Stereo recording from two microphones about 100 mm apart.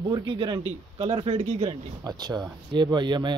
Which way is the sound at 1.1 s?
70° right (ahead or behind).